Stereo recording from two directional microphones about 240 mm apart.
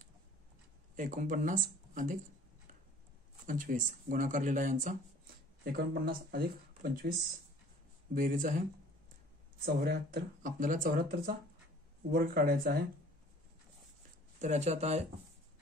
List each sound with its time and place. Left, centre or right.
0.9 s speech: right
3.4 s speech: right
9.8 s speech: right
14.4 s speech: right